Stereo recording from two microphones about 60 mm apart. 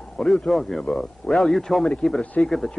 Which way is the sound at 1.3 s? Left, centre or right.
Centre.